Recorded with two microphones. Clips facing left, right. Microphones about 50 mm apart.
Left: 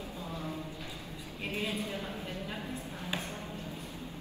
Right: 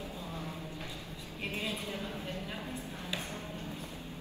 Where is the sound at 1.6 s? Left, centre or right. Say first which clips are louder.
Left 4 dB; left.